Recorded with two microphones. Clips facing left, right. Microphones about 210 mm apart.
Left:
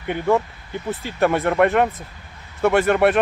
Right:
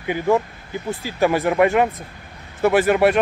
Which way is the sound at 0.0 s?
Centre (ahead or behind).